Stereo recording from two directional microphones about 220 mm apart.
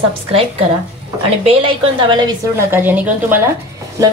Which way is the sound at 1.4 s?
25° right (ahead or behind).